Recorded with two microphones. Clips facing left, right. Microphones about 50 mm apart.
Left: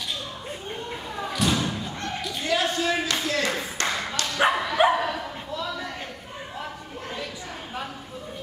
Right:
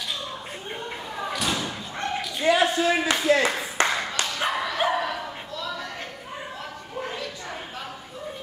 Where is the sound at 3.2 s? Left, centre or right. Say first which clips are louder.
Right 5 dB; right.